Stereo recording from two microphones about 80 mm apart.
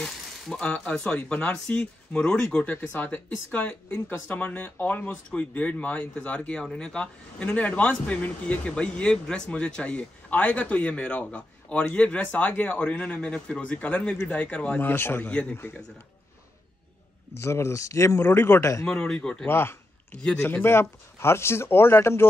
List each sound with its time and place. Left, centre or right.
0.0 s a man's voice: centre
14.9 s a man's voice: left
17.4 s speech: left
18.9 s speech: centre
19.4 s a sound: left
20.3 s speech: left